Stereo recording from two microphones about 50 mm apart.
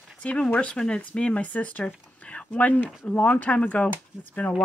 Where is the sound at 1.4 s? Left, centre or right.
Left.